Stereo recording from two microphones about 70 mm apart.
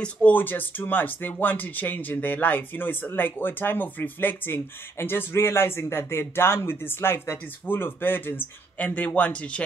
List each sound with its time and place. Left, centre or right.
0.0 s speech: left